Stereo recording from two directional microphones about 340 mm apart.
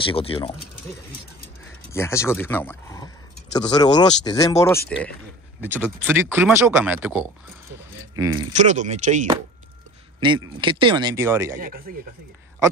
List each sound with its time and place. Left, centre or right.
0.0 s speech: centre
1.9 s speech: centre
5.8 s speech: centre
8.5 s speech: right
11.6 s speech: right